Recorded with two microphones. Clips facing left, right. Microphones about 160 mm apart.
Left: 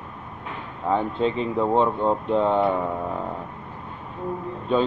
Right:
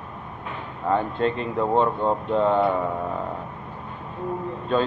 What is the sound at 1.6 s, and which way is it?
Speech, 5° right (ahead or behind).